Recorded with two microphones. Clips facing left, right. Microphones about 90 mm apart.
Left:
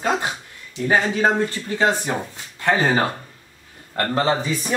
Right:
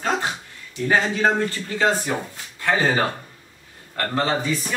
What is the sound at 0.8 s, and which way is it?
Speech, 15° left (ahead or behind).